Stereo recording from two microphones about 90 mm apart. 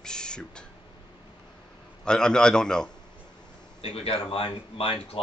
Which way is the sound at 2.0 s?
10° left (ahead or behind).